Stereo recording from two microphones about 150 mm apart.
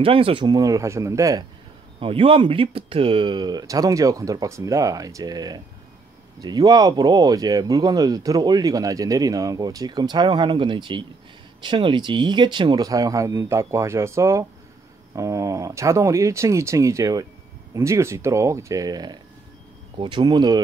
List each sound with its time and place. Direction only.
0.0 s speech: 35° right (ahead or behind); by 1.4 s 20° right (ahead or behind)
2.0 s speech: 35° right (ahead or behind)